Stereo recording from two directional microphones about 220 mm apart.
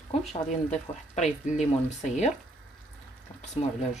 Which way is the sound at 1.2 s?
30° left (ahead or behind).